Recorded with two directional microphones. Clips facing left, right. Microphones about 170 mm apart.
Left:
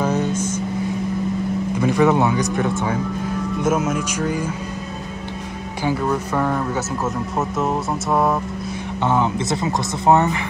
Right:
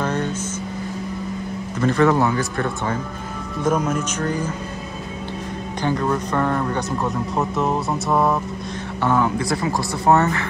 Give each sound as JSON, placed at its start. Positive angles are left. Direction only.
{"t": 0.0, "sound": "vehicle", "side_deg": 10}
{"t": 1.8, "sound": "speech", "side_deg": 10}
{"t": 5.9, "sound": "music", "side_deg": 5}
{"t": 9.0, "sound": "speech", "side_deg": 20}